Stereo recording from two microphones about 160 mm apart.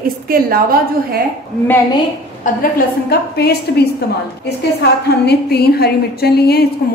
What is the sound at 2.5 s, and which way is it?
Speech, 55° left (ahead or behind).